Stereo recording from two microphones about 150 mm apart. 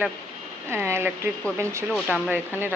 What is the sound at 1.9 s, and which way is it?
Speech, centre (ahead or behind).